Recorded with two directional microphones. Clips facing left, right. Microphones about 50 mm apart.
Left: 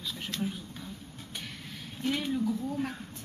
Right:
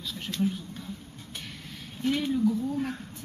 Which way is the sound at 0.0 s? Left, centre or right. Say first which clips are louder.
Right 5 dB; centre.